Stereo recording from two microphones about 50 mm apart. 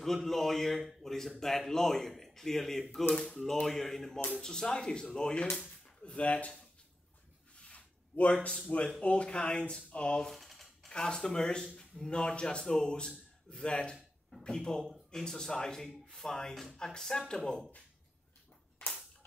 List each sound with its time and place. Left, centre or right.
0.0 s a man's voice: centre; by 6.5 s left
7.5 s a sound: left
8.5 s a man's voice: centre
10.2 s typewriter: centre
10.9 s a man's voice: centre